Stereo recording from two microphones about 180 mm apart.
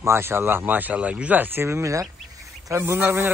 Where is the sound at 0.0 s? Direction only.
15° right (ahead or behind).